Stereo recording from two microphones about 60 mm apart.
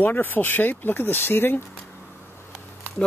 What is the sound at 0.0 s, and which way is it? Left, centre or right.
Speech, left.